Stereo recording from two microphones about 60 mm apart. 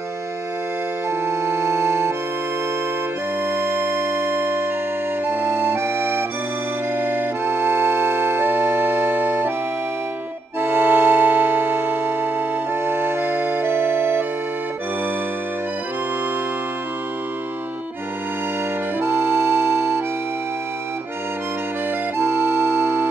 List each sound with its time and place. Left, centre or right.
1.2 s music: right
3.4 s music: right
7.0 s music: right
10.6 s music: right
18.9 s music: right
22.2 s music: right